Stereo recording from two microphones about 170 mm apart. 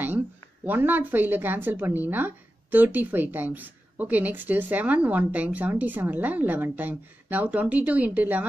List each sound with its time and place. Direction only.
0.7 s a woman's voice: 10° right (ahead or behind)